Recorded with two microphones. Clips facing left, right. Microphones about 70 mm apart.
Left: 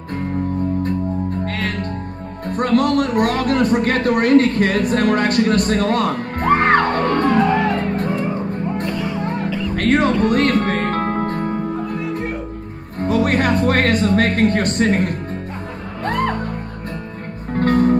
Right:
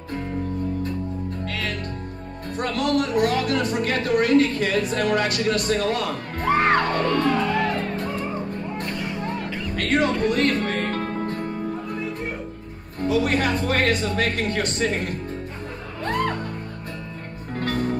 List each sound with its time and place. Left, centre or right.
1.4 s music: left
2.5 s speech: left
9.8 s music: left
13.0 s speech: left
16.0 s music: left
17.6 s music: left